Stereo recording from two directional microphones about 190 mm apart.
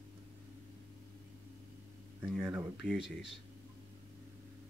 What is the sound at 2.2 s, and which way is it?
Speech, 5° right (ahead or behind).